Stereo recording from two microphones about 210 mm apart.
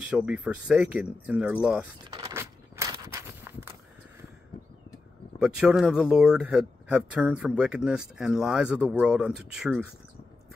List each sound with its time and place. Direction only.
0.0 s speech: 5° right (ahead or behind)
2.1 s a sound: 15° right (ahead or behind)
5.4 s speech: 5° right (ahead or behind)